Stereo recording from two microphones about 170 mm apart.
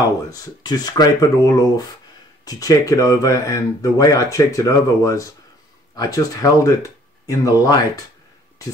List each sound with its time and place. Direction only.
0.0 s speech: 20° left (ahead or behind)